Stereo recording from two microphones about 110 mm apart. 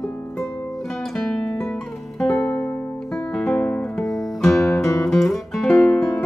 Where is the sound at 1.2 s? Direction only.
5° left (ahead or behind).